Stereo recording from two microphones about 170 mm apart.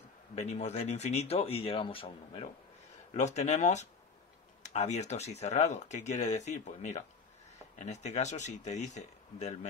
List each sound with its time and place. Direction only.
0.4 s speech: 40° left (ahead or behind)